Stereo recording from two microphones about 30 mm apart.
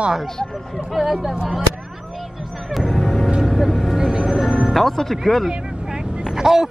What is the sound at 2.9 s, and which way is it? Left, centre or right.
Music, centre.